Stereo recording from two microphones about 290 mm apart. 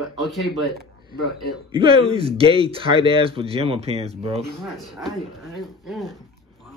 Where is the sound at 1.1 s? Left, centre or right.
Left.